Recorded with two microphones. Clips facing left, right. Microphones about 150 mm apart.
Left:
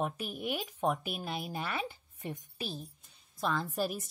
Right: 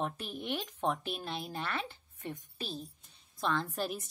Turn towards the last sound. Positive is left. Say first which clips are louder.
# left 1 dB
turn(degrees=5)  # may be behind; listen again after turning